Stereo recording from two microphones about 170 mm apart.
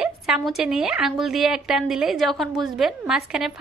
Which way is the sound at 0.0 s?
5° right (ahead or behind).